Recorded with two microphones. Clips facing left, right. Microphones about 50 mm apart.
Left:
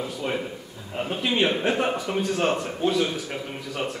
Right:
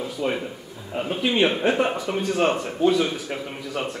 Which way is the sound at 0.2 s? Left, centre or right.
Centre.